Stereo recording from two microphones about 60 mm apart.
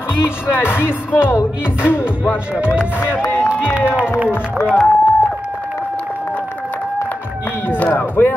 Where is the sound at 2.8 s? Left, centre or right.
Left.